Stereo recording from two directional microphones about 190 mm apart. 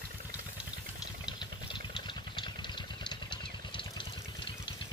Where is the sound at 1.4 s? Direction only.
25° left (ahead or behind).